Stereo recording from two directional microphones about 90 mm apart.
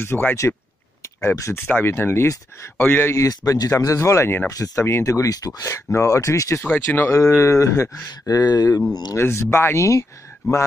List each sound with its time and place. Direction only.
0.0 s speech: 25° left (ahead or behind)
1.0 s speech: 35° left (ahead or behind)
3.2 s speech: 40° left (ahead or behind)
6.6 s speech: 20° left (ahead or behind)
7.1 s speech: 35° left (ahead or behind)
9.1 s speech: 30° left (ahead or behind)